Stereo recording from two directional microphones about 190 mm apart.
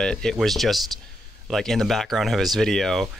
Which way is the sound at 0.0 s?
5° left (ahead or behind).